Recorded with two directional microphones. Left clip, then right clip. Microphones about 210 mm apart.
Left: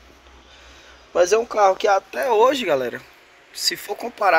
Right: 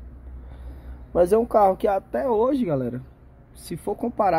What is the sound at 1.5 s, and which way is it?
Speech, 20° right (ahead or behind).